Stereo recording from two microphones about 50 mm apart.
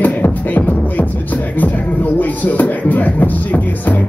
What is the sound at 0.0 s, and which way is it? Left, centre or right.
Music, left.